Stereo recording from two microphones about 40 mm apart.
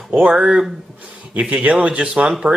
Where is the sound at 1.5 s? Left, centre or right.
Right.